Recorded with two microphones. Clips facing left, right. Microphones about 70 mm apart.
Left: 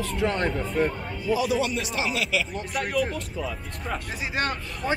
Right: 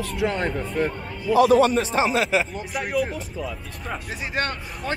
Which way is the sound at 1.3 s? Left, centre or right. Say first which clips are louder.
Right 8 dB; right.